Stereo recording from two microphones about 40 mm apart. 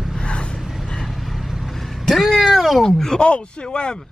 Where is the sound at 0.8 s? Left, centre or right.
Centre.